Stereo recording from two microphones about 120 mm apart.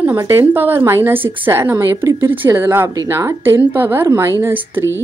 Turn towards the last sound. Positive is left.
turn(degrees=-15)  # may be behind; listen again after turning